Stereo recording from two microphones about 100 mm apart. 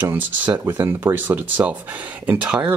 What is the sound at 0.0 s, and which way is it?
Speech, 20° right (ahead or behind).